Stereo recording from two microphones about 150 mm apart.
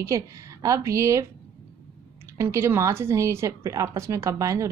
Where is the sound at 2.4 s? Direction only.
15° right (ahead or behind).